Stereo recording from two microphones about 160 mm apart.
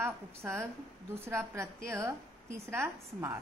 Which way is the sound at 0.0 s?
15° right (ahead or behind).